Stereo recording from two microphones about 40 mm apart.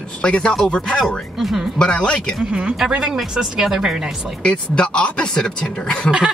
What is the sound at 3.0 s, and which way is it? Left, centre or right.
Speech, centre.